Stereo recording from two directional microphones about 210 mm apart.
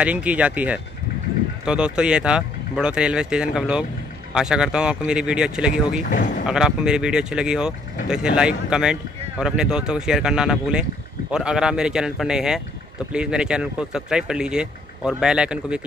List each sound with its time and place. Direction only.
0.0 s speech: 5° right (ahead or behind)
6.0 s speech: 40° left (ahead or behind)
6.4 s speech: 5° right (ahead or behind)